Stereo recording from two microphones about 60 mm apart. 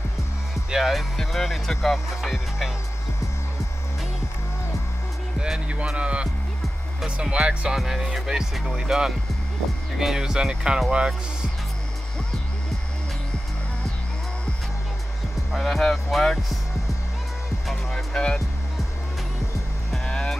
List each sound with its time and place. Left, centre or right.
0.7 s speech: centre
5.4 s music: centre
7.7 s music: centre
15.5 s speech: centre
17.9 s music: centre
20.1 s music: centre